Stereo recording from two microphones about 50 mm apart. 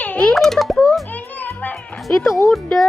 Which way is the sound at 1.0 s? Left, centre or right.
Left.